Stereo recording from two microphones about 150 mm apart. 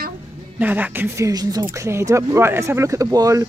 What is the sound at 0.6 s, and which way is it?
Speech, 10° right (ahead or behind).